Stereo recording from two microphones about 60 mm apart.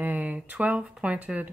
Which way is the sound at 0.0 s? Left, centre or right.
Right.